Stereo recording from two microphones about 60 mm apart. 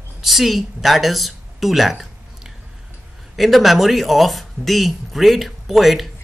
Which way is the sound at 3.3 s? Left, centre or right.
Centre.